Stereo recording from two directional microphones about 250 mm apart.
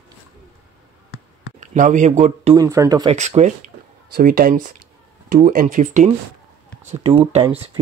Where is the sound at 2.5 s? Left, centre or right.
Centre.